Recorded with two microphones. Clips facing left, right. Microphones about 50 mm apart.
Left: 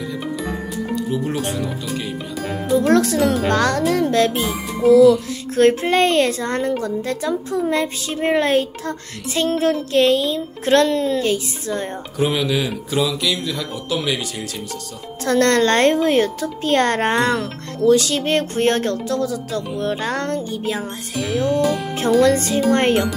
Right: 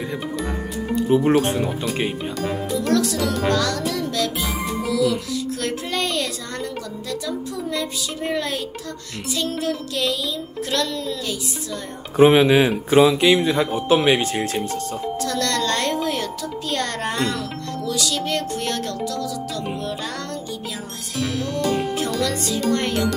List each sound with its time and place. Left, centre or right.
1.1 s speech: right
2.9 s speech: left
12.2 s speech: right
15.2 s speech: left
21.2 s music: centre
22.2 s speech: left